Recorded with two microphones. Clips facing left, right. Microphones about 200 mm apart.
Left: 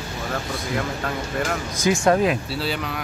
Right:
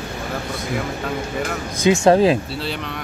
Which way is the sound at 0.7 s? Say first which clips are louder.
Right 2 dB; 5° right (ahead or behind).